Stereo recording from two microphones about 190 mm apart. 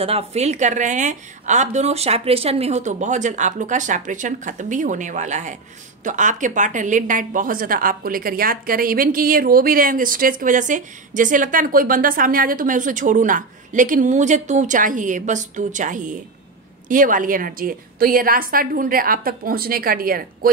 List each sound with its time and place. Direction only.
0.0 s a woman's voice: 35° right (ahead or behind); by 20.5 s 50° right (ahead or behind)